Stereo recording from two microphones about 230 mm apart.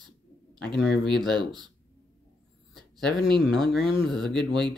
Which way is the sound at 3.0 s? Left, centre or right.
Centre.